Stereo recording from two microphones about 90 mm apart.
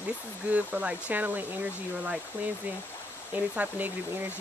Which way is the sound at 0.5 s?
15° right (ahead or behind).